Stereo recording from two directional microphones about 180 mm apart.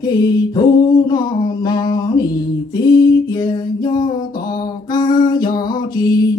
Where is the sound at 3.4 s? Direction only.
25° left (ahead or behind).